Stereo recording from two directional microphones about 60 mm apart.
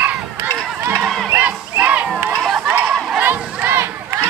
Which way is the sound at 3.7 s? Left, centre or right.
Right.